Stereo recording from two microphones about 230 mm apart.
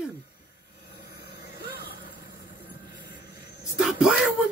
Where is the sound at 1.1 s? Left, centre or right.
Left.